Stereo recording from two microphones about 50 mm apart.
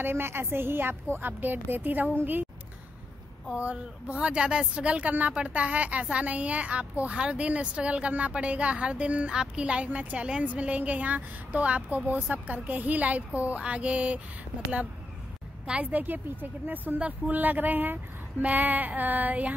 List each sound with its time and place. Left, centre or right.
0.0 s a woman's voice: right
3.5 s speech: right
15.6 s a woman's voice: centre
15.9 s speech: right